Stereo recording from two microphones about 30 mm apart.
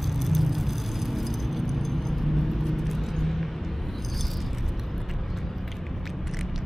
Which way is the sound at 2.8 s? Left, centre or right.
Centre.